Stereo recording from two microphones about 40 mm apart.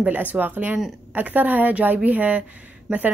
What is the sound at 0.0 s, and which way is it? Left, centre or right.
Speech, right.